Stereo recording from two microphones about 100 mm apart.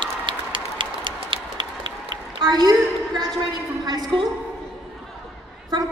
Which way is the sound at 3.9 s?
45° right (ahead or behind).